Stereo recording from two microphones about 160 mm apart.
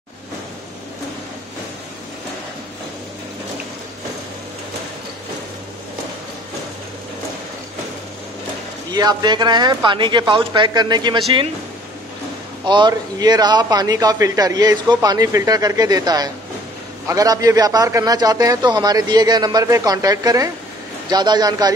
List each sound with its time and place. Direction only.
8.9 s a man's voice: 25° right (ahead or behind)
12.6 s a man's voice: 30° right (ahead or behind)